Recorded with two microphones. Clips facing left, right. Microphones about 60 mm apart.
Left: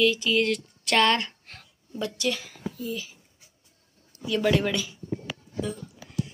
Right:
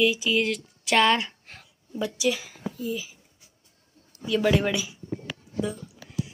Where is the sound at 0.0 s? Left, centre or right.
Centre.